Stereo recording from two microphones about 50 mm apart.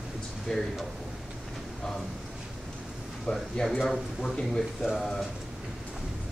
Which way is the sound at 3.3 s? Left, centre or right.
Left.